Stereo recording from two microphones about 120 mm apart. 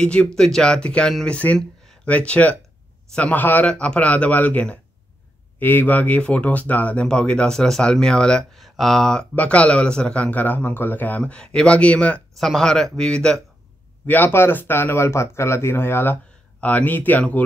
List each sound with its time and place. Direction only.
0.0 s speech: 5° left (ahead or behind)